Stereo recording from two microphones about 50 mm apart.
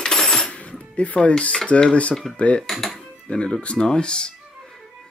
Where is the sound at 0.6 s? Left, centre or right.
Left.